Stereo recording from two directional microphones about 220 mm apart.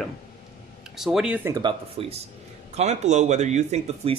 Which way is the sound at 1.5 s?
25° right (ahead or behind).